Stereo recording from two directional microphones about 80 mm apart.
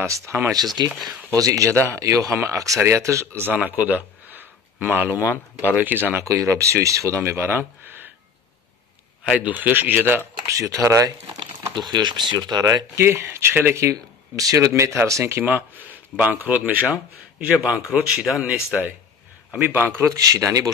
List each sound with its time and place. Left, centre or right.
0.0 s speech: right
0.8 s speech: right
1.3 s speech: right
1.7 s speech: left
2.0 s speech: right
3.4 s speech: centre
5.2 s speech: left
5.8 s speech: right
6.2 s speech: right
9.4 s speech: right
10.4 s speech: right
11.9 s speech: right
12.9 s speech: right
20.1 s speech: right